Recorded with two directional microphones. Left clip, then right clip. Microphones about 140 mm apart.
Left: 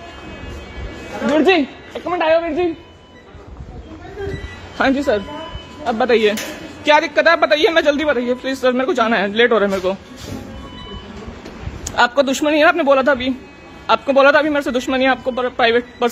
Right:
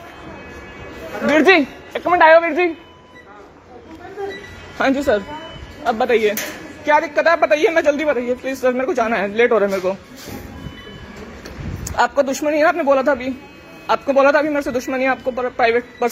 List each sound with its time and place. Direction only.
1.3 s a sound: 10° left (ahead or behind)
2.1 s a man's voice: 15° left (ahead or behind)
4.7 s a man's voice: 15° left (ahead or behind)
5.9 s a man's voice: 25° left (ahead or behind)
7.2 s a man's voice: 15° left (ahead or behind)
11.8 s a man's voice: 20° left (ahead or behind)